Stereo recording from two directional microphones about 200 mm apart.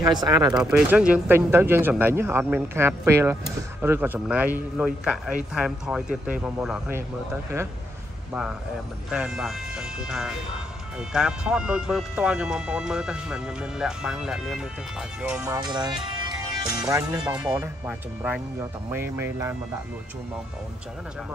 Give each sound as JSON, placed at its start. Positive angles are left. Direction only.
{"t": 0.0, "sound": "speech", "side_deg": -20}
{"t": 0.6, "sound": "speech", "side_deg": -5}
{"t": 8.3, "sound": "speech", "side_deg": -5}
{"t": 15.4, "sound": "speech", "side_deg": -20}
{"t": 16.8, "sound": "speech", "side_deg": -5}